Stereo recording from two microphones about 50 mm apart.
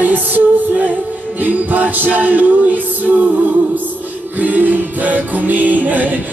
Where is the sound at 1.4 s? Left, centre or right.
Right.